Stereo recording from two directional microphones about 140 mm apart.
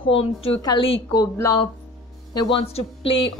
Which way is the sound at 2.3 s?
35° left (ahead or behind).